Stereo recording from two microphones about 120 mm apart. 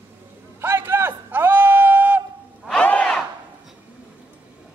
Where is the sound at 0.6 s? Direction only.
20° right (ahead or behind).